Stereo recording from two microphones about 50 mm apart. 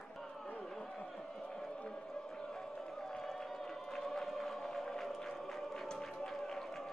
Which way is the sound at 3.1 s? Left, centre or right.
Centre.